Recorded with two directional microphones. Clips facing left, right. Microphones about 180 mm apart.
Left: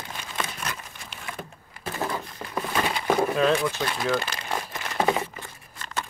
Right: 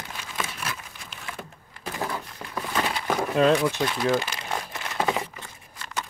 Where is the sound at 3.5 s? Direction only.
15° right (ahead or behind).